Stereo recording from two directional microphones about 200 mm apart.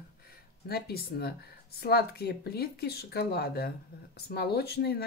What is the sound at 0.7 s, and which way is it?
Speech, 55° left (ahead or behind).